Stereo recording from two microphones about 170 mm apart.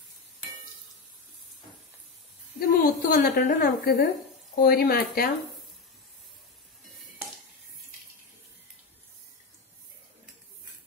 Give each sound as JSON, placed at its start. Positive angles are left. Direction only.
{"t": 2.8, "sound": "a woman's voice", "side_deg": 55}